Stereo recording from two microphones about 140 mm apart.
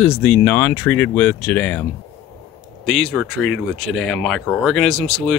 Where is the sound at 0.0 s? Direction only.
15° left (ahead or behind).